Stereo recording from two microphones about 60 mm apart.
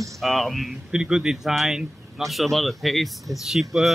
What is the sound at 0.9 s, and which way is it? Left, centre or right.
Speech, centre.